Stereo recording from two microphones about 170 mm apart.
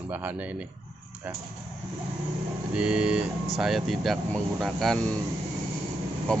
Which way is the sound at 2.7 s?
5° right (ahead or behind).